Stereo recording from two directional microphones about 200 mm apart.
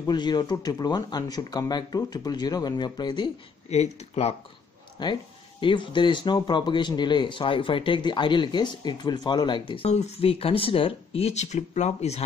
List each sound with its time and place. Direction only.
0.0 s speech: 20° left (ahead or behind)